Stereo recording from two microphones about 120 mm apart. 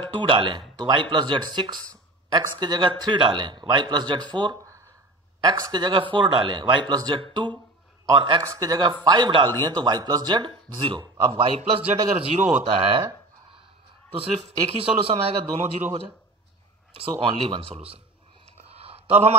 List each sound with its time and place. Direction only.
0.1 s speech: 40° right (ahead or behind)
8.4 s speech: 30° right (ahead or behind); by 13.0 s 50° right (ahead or behind)
14.1 s speech: 50° right (ahead or behind)
15.6 s a man's voice: 80° right
17.2 s speech: 50° right (ahead or behind)
18.6 s a sound: 55° right (ahead or behind)